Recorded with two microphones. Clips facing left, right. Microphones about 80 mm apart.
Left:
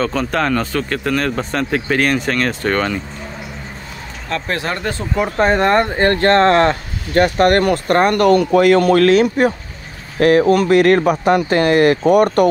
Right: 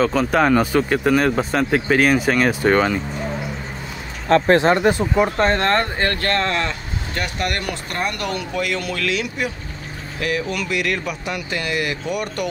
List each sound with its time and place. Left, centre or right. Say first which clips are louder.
0.0 s speech: right 1 dB; centre
4.3 s speech: right 8 dB; right
4.7 s speech: right 3 dB; centre
5.4 s speech: left 4 dB; centre
6.0 s speech: left 9 dB; left